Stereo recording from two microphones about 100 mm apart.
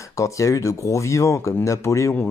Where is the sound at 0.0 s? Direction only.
30° left (ahead or behind).